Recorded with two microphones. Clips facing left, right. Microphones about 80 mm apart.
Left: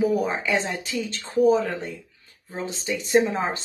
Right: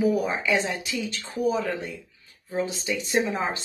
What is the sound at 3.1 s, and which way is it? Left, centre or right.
Speech, centre.